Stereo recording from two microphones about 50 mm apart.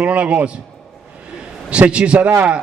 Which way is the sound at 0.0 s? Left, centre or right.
Right.